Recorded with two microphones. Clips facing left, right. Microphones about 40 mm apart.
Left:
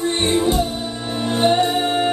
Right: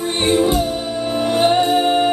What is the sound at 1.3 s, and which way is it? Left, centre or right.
Music, right.